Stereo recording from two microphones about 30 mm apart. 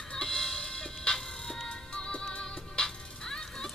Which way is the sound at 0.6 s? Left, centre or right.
Left.